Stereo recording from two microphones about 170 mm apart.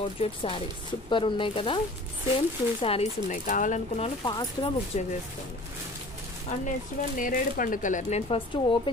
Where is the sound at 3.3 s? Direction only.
50° left (ahead or behind).